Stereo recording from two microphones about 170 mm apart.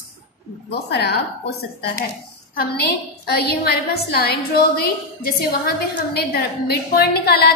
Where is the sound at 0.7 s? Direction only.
75° left (ahead or behind).